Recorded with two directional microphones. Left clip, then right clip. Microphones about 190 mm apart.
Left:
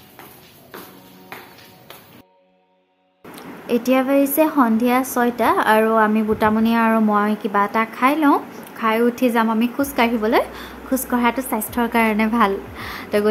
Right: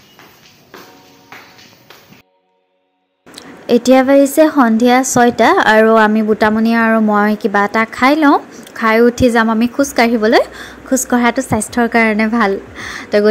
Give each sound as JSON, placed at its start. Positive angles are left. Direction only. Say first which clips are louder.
{"t": 3.3, "sound": "a woman's voice", "louder": "right 8 dB", "side_deg": -30}